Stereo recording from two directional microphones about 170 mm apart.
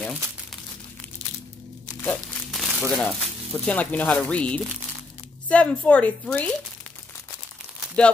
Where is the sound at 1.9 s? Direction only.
15° left (ahead or behind).